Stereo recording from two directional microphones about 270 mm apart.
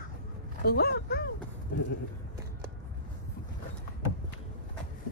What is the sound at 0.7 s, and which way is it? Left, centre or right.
Speech, left.